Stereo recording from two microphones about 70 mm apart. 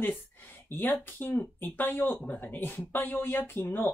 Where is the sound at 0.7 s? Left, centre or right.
Left.